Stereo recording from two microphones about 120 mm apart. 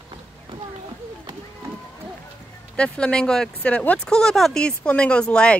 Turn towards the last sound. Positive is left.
turn(degrees=10)  # may be behind; listen again after turning